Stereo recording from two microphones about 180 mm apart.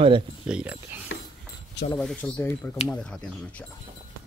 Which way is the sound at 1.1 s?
90° left.